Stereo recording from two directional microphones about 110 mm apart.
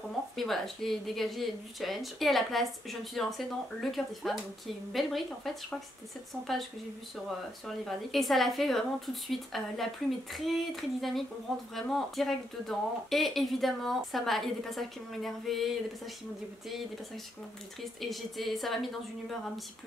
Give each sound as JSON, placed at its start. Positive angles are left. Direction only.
{"t": 0.4, "sound": "speech", "side_deg": 0}
{"t": 7.2, "sound": "speech", "side_deg": 0}
{"t": 18.0, "sound": "speech", "side_deg": 0}